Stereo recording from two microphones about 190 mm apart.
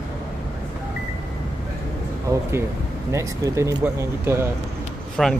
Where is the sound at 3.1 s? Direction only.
15° right (ahead or behind).